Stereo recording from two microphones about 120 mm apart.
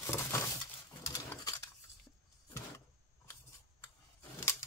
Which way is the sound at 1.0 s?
30° left (ahead or behind).